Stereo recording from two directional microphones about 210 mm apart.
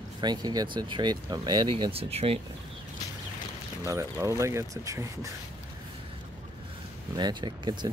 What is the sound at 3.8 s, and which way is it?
Speech, 15° right (ahead or behind).